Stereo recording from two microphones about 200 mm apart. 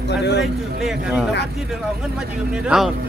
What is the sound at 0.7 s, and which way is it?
Speech, 5° right (ahead or behind).